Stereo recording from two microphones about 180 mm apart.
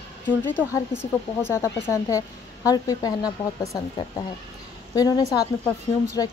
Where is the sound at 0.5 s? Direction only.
10° left (ahead or behind).